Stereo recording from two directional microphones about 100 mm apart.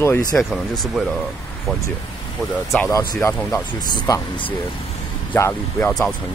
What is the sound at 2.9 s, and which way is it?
Speech, 40° left (ahead or behind).